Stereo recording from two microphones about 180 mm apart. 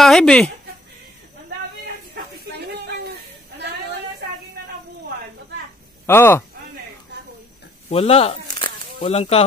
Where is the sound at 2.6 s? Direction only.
65° right (ahead or behind).